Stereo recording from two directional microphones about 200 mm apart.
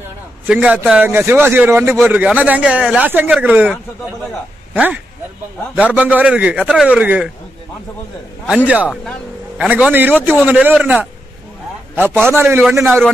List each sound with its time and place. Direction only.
0.5 s speech: 5° right (ahead or behind)
8.5 s speech: 5° right (ahead or behind)
12.3 s speech: 10° right (ahead or behind)